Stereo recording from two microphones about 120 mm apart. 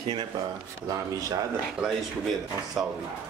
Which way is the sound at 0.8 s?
25° right (ahead or behind).